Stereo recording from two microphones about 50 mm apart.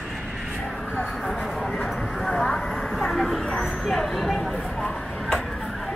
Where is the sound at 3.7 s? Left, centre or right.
Centre.